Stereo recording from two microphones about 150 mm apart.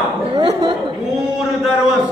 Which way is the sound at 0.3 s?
40° right (ahead or behind).